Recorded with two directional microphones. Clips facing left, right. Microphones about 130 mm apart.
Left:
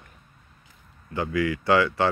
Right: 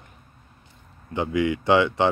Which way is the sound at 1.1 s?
20° right (ahead or behind).